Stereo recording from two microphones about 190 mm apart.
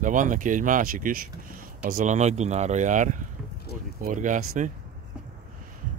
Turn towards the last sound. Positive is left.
turn(degrees=-40)  # may be behind; listen again after turning